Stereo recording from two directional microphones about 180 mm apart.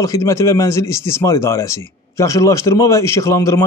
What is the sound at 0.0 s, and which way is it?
A man's voice, 15° left (ahead or behind).